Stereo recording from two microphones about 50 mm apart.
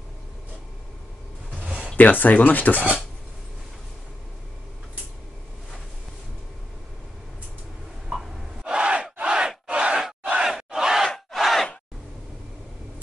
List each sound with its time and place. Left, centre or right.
1.6 s a sound: centre
2.0 s speech: left
8.6 s battle cry: right
9.2 s crowd: centre
11.3 s crowd: centre